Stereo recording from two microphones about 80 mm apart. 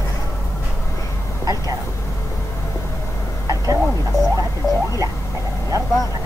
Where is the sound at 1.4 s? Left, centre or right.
Right.